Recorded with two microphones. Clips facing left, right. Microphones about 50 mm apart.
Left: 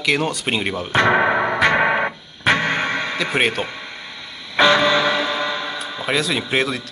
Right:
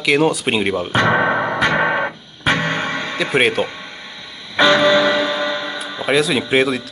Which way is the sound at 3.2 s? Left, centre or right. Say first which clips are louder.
Right 5 dB; centre.